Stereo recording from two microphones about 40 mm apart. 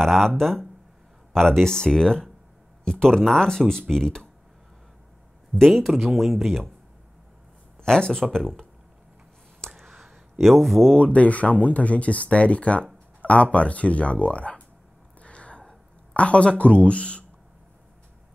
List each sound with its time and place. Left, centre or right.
0.0 s speech: centre
5.6 s speech: centre
7.8 s speech: centre
9.8 s a sound: centre
11.0 s speech: left
15.2 s a sound: left
16.1 s speech: left